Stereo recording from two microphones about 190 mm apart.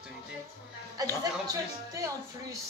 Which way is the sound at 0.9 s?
20° right (ahead or behind).